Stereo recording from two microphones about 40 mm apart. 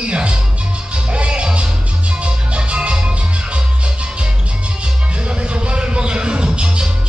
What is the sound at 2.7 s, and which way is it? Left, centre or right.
Music, right.